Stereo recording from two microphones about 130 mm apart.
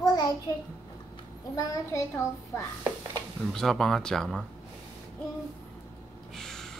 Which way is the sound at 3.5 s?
5° left (ahead or behind).